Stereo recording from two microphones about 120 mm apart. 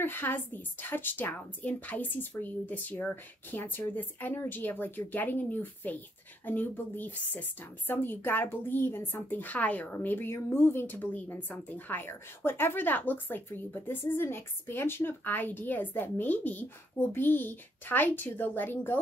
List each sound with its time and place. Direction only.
0.0 s a woman's voice: 15° left (ahead or behind)